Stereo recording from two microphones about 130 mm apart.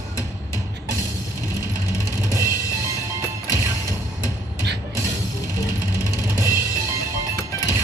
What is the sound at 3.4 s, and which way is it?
Music, 30° left (ahead or behind).